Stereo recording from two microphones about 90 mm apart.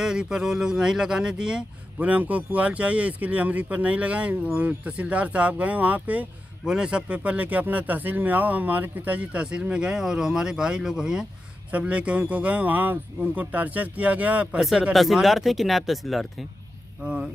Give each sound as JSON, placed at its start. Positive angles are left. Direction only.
{"t": 0.0, "sound": "speech", "side_deg": -5}
{"t": 14.8, "sound": "speech", "side_deg": 0}
{"t": 17.0, "sound": "speech", "side_deg": -10}